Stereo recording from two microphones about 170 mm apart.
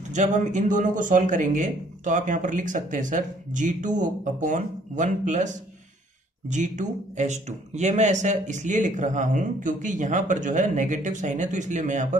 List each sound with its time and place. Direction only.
0.1 s speech: 45° right (ahead or behind)